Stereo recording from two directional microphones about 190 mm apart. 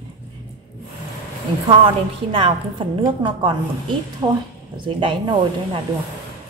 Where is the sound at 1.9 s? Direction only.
25° right (ahead or behind).